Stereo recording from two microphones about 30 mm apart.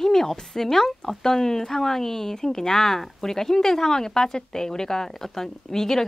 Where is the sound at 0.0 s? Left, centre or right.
Centre.